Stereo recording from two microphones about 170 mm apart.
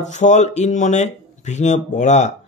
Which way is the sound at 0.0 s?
45° left (ahead or behind).